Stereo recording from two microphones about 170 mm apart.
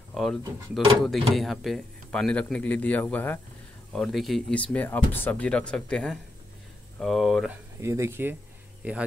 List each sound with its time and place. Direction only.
0.1 s speech: centre (ahead or behind)
7.8 s speech: 15° right (ahead or behind)